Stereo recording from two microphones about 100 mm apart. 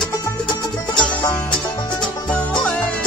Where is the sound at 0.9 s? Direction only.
50° left (ahead or behind).